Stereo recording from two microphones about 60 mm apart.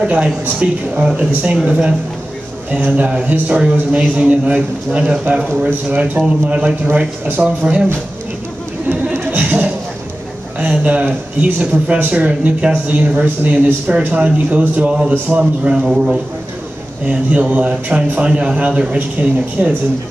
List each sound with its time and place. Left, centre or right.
0.0 s speech: centre
6.9 s speech: right
9.1 s a sound: right
9.4 s a sound: right
10.6 s a man's voice: right
17.0 s speech: right